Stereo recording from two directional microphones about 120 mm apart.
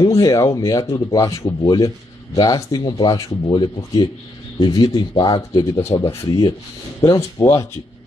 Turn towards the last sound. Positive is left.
turn(degrees=25)  # may be behind; listen again after turning